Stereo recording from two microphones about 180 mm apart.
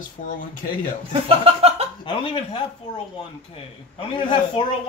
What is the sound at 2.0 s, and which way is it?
Speech, 30° left (ahead or behind).